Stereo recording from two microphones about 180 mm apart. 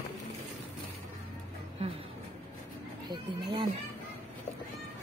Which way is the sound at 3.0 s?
25° right (ahead or behind).